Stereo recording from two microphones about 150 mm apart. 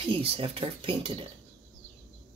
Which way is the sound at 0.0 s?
40° right (ahead or behind).